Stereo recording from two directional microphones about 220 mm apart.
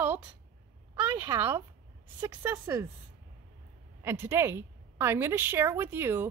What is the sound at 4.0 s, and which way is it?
Speech, 10° right (ahead or behind).